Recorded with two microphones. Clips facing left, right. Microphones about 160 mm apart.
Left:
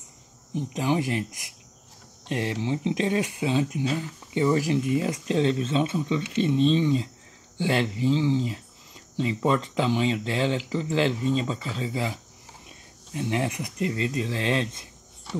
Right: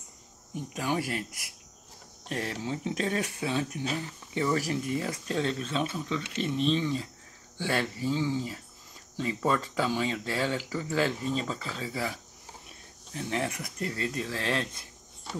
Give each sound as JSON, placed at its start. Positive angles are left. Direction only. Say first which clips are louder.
{"t": 0.6, "sound": "speech", "louder": "left 5 dB", "side_deg": 20}